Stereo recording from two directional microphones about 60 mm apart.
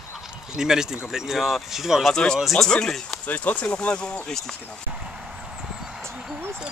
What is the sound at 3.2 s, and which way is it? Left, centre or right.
Speech, left.